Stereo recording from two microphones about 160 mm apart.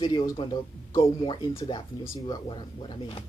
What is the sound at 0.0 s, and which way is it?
Speech, 25° left (ahead or behind).